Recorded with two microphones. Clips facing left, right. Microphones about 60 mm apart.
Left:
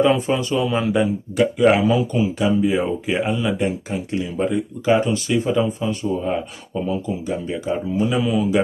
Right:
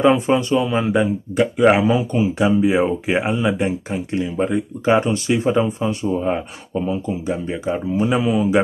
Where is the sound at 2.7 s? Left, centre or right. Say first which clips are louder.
Right 3 dB; right.